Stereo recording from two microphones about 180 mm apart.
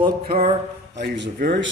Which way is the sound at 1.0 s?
70° right (ahead or behind).